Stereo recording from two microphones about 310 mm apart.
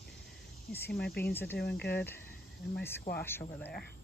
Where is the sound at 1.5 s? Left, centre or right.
Left.